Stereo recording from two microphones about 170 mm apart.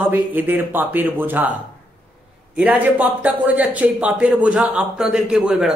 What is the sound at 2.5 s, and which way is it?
Speech, 10° right (ahead or behind).